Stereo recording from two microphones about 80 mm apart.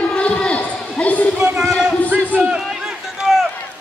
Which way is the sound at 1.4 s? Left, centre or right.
Centre.